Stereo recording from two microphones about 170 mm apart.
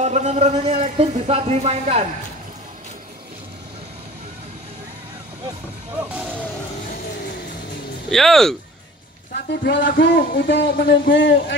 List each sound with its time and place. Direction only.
0.0 s speech: 40° right (ahead or behind)
8.1 s speech: centre (ahead or behind)
9.3 s speech: 75° left (ahead or behind); by 11.5 s 90° left